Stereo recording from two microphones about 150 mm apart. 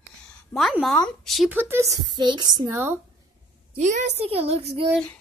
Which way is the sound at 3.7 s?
50° right (ahead or behind).